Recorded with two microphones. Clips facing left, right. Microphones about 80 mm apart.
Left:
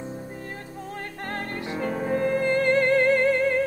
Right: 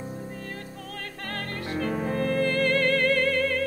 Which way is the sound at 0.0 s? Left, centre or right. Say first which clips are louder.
Left 1 dB; left.